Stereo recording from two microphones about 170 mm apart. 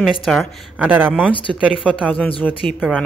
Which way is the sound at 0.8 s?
10° right (ahead or behind).